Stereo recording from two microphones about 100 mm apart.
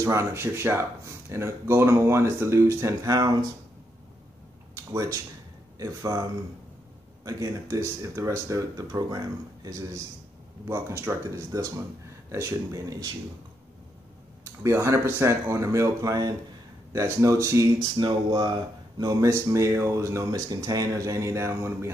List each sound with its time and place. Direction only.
0.0 s speech: 30° right (ahead or behind)
4.7 s speech: 30° right (ahead or behind)
7.2 s speech: 35° right (ahead or behind)
10.7 s speech: 25° right (ahead or behind)
14.4 s speech: 30° right (ahead or behind)
17.9 s speech: 45° right (ahead or behind)
19.2 s speech: 30° right (ahead or behind)